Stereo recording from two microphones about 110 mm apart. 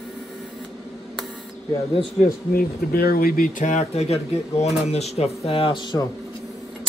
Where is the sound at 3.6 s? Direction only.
90° left.